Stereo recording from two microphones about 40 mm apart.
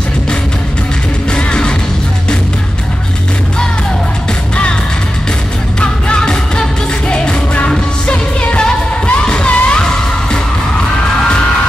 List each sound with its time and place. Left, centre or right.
1.3 s music: left
5.8 s music: left